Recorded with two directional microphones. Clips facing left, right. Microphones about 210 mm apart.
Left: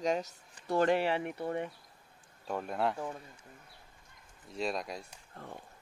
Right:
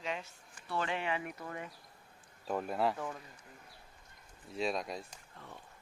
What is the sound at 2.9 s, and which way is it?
Speech, 25° left (ahead or behind).